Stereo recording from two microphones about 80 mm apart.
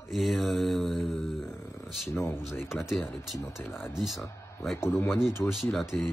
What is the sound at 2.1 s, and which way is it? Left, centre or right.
Speech, left.